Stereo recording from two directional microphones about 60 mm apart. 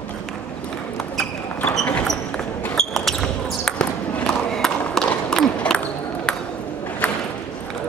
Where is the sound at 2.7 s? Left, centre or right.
Centre.